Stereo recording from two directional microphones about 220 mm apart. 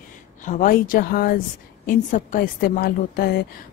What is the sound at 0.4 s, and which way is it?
A woman's voice, 35° left (ahead or behind).